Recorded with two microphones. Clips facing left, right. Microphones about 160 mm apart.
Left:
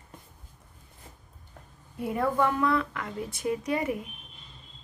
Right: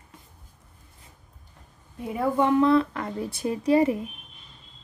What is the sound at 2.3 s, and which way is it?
Speech, 25° right (ahead or behind).